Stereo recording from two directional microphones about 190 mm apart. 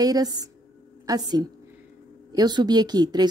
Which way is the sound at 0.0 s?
20° right (ahead or behind).